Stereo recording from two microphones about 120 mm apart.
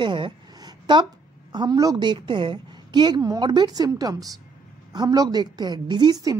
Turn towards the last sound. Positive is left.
turn(degrees=-30)  # may be behind; listen again after turning